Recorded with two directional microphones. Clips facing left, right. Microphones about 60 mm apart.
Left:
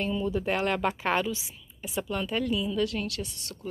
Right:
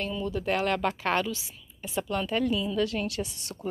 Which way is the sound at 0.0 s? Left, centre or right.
Centre.